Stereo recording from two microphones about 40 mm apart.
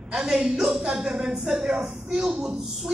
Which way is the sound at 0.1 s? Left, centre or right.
Centre.